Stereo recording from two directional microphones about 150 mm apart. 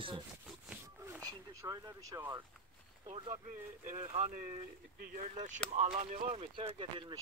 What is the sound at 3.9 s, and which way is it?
Speech, 55° right (ahead or behind).